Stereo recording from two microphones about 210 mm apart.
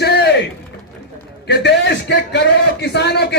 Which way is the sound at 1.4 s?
55° left (ahead or behind).